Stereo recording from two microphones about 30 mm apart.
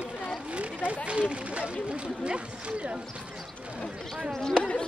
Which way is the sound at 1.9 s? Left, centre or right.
Right.